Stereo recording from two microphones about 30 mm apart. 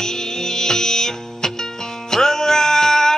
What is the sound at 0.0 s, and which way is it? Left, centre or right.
Music, centre.